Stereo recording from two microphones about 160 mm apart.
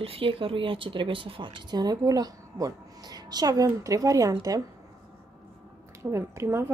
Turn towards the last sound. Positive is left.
turn(degrees=-15)  # may be behind; listen again after turning